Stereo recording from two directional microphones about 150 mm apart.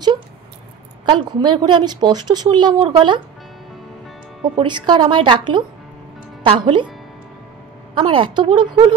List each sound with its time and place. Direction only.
1.0 s speech: 30° right (ahead or behind)
4.6 s a woman's voice: 30° right (ahead or behind)
7.9 s a woman's voice: 35° right (ahead or behind)